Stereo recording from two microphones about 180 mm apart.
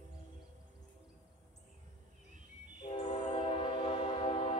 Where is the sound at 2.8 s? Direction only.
30° left (ahead or behind).